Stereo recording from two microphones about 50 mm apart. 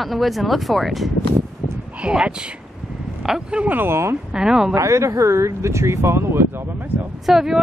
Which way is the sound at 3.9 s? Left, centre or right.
Right.